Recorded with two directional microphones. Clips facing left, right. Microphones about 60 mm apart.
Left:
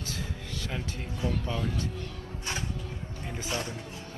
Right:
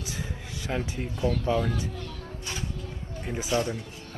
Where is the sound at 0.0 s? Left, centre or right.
Centre.